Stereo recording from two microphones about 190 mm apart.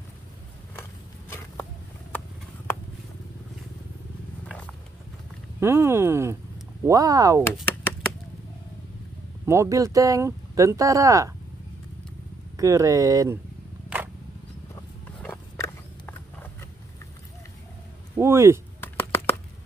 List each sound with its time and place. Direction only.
5.6 s speech: 15° right (ahead or behind)
9.5 s speech: 15° right (ahead or behind)
12.5 s speech: 15° right (ahead or behind)
15.2 s a sound: 15° left (ahead or behind)
18.1 s speech: 15° right (ahead or behind)
18.8 s a sound: 10° left (ahead or behind)